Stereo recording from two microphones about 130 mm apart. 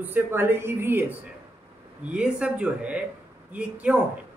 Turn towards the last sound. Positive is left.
turn(degrees=-10)  # may be behind; listen again after turning